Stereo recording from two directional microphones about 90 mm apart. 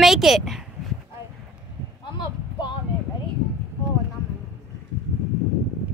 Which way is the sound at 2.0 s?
65° left (ahead or behind).